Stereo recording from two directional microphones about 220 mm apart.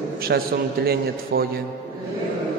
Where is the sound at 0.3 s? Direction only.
45° right (ahead or behind).